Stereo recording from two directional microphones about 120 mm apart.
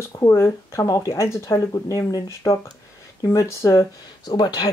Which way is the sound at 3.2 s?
25° left (ahead or behind).